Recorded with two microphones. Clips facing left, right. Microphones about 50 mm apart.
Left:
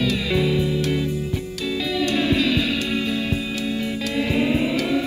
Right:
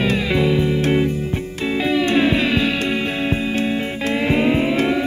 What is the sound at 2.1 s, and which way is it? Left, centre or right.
Music, right.